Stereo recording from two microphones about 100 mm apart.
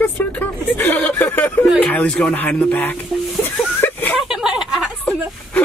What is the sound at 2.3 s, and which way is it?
Speech, 15° left (ahead or behind).